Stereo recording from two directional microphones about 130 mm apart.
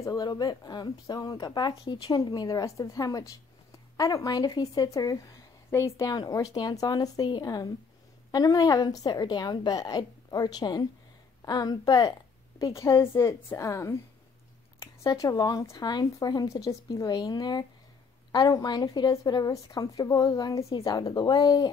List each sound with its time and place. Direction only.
0.0 s a woman's voice: 30° left (ahead or behind)